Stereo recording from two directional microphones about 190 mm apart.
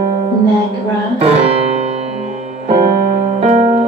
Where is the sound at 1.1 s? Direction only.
35° right (ahead or behind).